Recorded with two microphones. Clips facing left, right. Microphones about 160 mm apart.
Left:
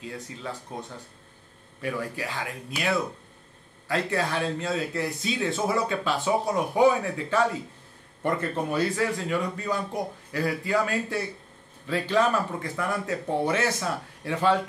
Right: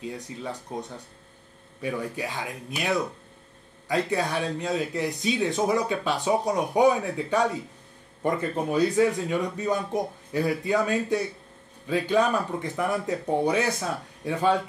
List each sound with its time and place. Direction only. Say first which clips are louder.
0.4 s a man's voice: right 3 dB; 20° right (ahead or behind)